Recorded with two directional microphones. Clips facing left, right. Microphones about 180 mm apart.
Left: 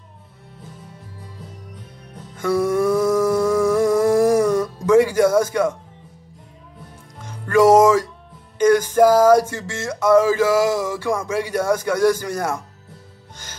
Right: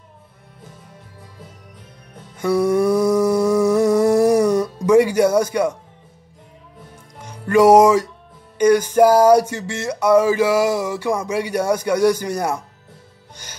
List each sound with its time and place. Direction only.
2.3 s music: 15° right (ahead or behind)
7.2 s music: 15° right (ahead or behind)
8.5 s a sound: 15° right (ahead or behind)